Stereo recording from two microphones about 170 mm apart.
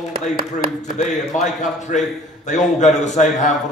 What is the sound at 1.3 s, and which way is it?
A man's voice, 45° left (ahead or behind).